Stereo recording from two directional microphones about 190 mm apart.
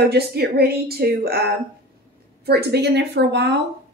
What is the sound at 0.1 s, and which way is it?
Speech, 55° right (ahead or behind).